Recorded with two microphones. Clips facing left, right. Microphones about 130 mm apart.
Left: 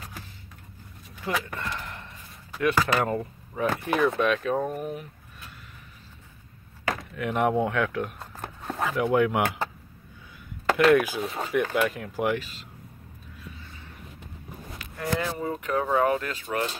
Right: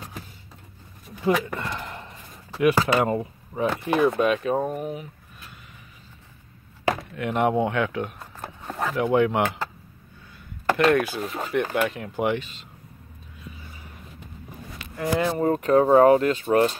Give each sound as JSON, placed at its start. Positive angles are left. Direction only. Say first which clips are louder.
{"t": 1.4, "sound": "a sound", "louder": "right 3 dB", "side_deg": -20}
{"t": 2.6, "sound": "speech", "louder": "right 4 dB", "side_deg": -20}
{"t": 3.0, "sound": "speech", "louder": "right 3 dB", "side_deg": -5}
{"t": 7.1, "sound": "speech", "louder": "left 1 dB", "side_deg": 0}
{"t": 10.8, "sound": "speech", "louder": "left 1 dB", "side_deg": 5}
{"t": 15.0, "sound": "speech", "louder": "right 5 dB", "side_deg": -10}
{"t": 15.3, "sound": "speech", "louder": "right 8 dB", "side_deg": -50}
{"t": 15.7, "sound": "speech", "louder": "right 9 dB", "side_deg": -35}